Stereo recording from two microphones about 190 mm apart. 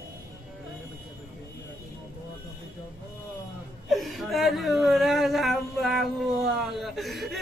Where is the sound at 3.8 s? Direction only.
Centre (ahead or behind).